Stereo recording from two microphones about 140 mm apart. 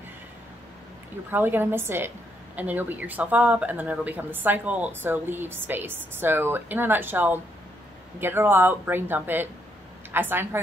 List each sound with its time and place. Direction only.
1.3 s a woman's voice: 15° right (ahead or behind)